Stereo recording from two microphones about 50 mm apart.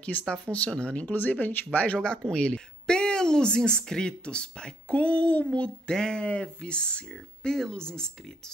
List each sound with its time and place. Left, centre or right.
0.2 s speech: left
1.1 s speech: left
2.3 s speech: centre